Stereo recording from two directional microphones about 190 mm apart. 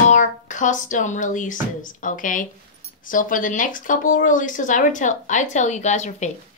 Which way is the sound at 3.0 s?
45° left (ahead or behind).